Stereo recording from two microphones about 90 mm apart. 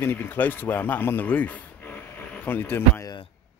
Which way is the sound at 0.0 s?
25° left (ahead or behind).